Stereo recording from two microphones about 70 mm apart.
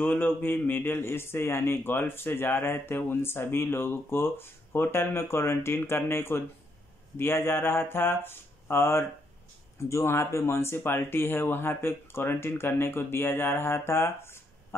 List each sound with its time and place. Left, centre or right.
0.1 s a man's voice: left